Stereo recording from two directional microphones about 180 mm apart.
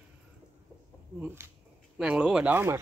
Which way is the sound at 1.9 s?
5° right (ahead or behind).